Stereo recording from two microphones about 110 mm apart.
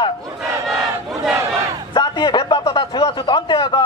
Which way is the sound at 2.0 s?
40° left (ahead or behind).